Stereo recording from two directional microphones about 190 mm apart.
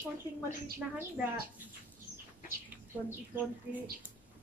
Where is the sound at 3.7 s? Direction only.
10° right (ahead or behind).